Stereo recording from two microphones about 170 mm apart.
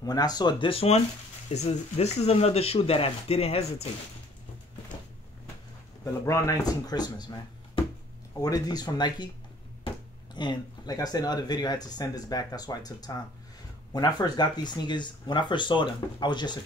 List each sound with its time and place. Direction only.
0.0 s speech: 25° left (ahead or behind); by 3.9 s 40° left (ahead or behind)
6.2 s speech: 20° left (ahead or behind)
10.3 s speech: 25° left (ahead or behind)